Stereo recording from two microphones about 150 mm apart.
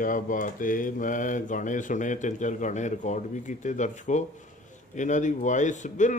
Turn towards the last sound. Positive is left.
turn(degrees=55)  # may be behind; listen again after turning